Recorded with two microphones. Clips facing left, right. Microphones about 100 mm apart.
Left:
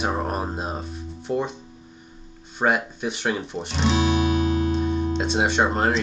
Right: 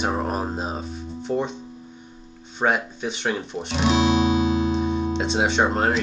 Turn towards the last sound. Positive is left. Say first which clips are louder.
# even
turn(degrees=0)  # may be behind; listen again after turning